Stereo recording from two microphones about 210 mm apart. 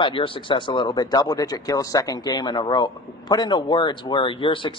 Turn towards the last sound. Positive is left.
turn(degrees=25)  # may be behind; listen again after turning